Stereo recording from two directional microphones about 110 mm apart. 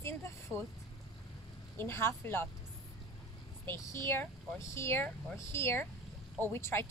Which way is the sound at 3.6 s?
25° left (ahead or behind).